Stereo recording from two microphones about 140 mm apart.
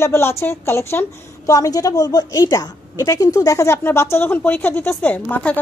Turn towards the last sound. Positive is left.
turn(degrees=10)  # may be behind; listen again after turning